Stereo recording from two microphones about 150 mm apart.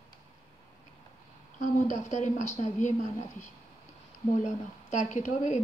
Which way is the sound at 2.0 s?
55° left (ahead or behind).